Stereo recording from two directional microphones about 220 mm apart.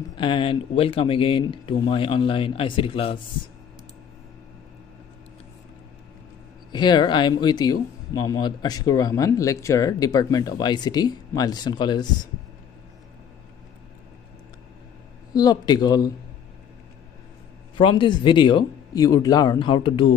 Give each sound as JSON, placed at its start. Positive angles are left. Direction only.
{"t": 0.1, "sound": "speech", "side_deg": 25}
{"t": 6.7, "sound": "speech", "side_deg": 20}
{"t": 15.3, "sound": "speech", "side_deg": 20}
{"t": 17.7, "sound": "speech", "side_deg": 20}